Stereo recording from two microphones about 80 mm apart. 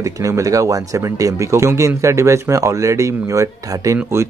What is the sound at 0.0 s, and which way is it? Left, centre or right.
Speech, right.